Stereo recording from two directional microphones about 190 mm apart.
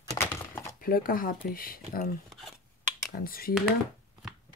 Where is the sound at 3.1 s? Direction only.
50° left (ahead or behind).